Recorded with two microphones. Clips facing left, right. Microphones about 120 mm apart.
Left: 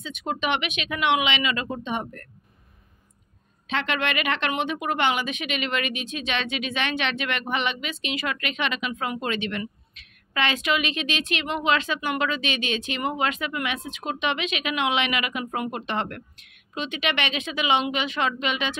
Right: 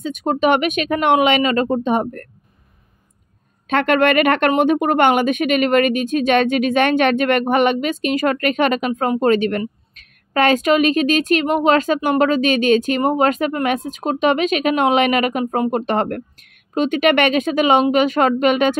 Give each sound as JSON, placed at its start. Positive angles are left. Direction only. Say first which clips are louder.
{"t": 0.0, "sound": "speech", "louder": "right 11 dB", "side_deg": -45}
{"t": 3.6, "sound": "speech", "louder": "right 11 dB", "side_deg": -50}